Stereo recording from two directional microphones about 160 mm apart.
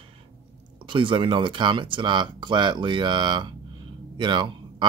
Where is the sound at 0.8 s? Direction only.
30° right (ahead or behind).